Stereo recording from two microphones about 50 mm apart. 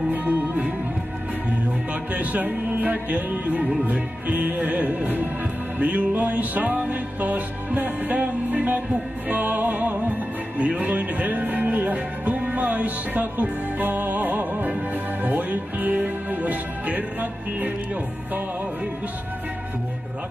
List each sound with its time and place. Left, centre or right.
0.1 s music: right
2.1 s music: right
10.6 s speech: right
15.2 s music: right